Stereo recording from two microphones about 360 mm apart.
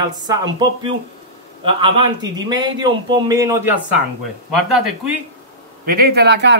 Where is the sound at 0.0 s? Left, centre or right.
Centre.